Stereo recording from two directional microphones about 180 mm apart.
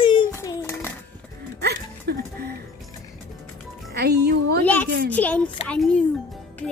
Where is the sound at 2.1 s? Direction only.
60° right (ahead or behind).